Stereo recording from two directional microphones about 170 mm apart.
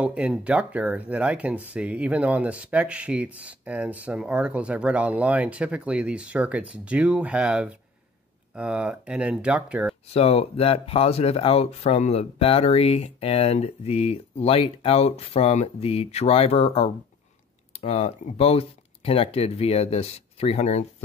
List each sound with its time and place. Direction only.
0.0 s speech: 5° right (ahead or behind)
10.1 s speech: 35° left (ahead or behind)